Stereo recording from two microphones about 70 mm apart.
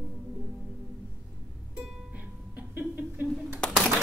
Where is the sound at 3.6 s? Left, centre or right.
Centre.